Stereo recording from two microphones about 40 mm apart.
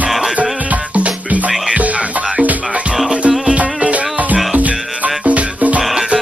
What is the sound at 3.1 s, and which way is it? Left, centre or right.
Music, right.